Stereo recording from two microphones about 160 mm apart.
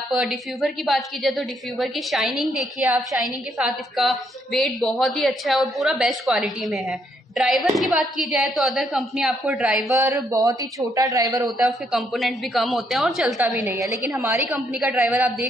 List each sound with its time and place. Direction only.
0.1 s a woman's voice: centre (ahead or behind)
9.9 s a man's voice: 20° right (ahead or behind)
11.4 s a woman's voice: centre (ahead or behind)
13.7 s a woman's voice: 10° right (ahead or behind)
14.5 s a woman's voice: 5° right (ahead or behind)